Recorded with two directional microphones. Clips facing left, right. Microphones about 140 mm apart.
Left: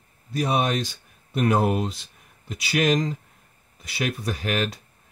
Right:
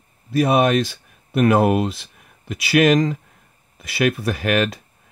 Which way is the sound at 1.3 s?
90° right.